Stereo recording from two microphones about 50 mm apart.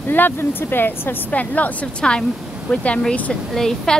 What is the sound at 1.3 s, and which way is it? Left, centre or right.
Speech, left.